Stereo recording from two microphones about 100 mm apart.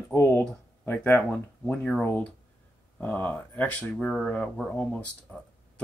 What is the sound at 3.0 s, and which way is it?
Speech, 15° left (ahead or behind).